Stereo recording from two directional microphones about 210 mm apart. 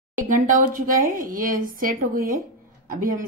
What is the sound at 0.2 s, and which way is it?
A woman's voice, 40° right (ahead or behind).